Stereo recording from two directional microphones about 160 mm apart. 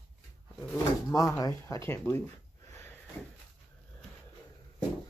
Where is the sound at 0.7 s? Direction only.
20° left (ahead or behind).